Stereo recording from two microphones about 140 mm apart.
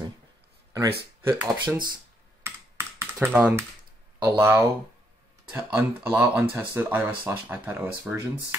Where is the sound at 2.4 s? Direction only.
15° right (ahead or behind).